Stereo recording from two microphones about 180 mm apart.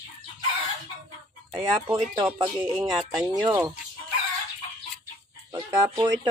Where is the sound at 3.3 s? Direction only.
20° right (ahead or behind).